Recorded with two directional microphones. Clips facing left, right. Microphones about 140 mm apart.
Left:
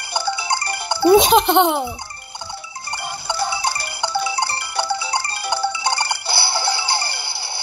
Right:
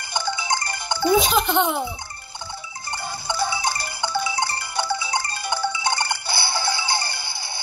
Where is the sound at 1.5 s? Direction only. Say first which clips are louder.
Left 6 dB; 70° left (ahead or behind).